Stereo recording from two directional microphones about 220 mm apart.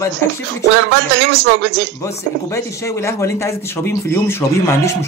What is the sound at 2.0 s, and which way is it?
Speech, 15° left (ahead or behind).